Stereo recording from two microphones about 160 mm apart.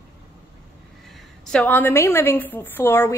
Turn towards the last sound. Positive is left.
turn(degrees=15)  # may be behind; listen again after turning